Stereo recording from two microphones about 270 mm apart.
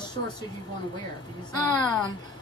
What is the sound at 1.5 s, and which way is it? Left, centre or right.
Speech, centre.